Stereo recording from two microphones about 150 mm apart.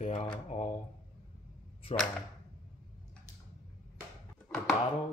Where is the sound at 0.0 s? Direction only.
45° left (ahead or behind).